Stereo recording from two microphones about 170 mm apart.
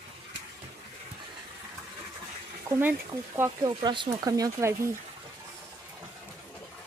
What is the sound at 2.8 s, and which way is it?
Speech, 10° right (ahead or behind).